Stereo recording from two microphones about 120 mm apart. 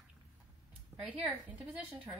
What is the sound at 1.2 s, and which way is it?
Speech, 10° right (ahead or behind).